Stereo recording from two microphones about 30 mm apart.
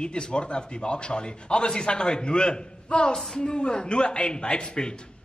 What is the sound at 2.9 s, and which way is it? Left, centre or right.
A man's voice, left.